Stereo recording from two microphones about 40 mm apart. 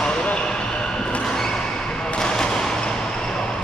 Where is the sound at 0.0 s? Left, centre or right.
Left.